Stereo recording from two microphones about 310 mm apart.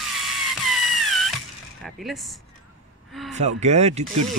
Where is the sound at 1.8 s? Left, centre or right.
Centre.